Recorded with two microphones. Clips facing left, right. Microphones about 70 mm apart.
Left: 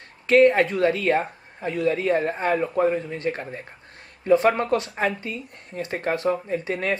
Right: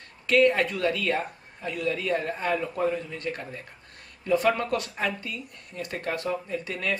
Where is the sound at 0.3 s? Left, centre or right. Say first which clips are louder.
Left 5 dB; left.